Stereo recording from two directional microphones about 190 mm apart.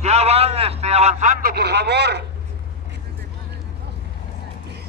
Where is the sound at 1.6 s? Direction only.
60° right (ahead or behind).